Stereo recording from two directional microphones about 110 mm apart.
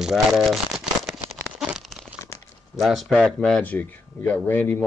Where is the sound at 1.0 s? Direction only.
Centre (ahead or behind).